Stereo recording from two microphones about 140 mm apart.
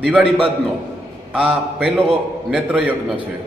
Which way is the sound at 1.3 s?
10° right (ahead or behind).